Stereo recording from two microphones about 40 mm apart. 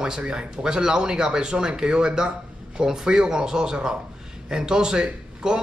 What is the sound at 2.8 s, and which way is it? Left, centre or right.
A man's voice, centre.